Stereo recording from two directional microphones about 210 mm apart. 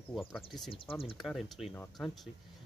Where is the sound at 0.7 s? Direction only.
25° left (ahead or behind).